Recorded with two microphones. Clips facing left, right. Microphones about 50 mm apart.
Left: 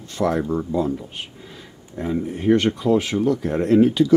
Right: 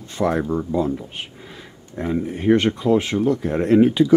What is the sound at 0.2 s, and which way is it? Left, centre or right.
Speech, centre.